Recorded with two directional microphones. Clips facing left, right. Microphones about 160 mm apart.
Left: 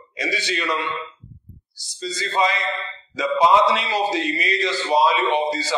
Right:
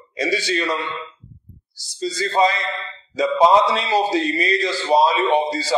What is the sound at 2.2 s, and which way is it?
A man's voice, 35° right (ahead or behind).